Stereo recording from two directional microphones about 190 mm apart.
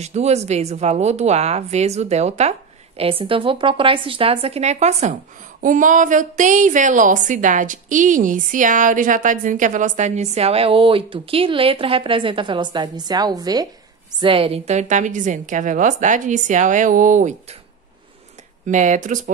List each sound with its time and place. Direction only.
0.0 s a woman's voice: 35° right (ahead or behind)
18.7 s a woman's voice: 40° right (ahead or behind)